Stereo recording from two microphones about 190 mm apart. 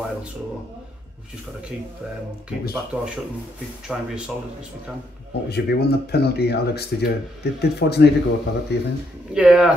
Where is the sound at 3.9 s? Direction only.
5° right (ahead or behind).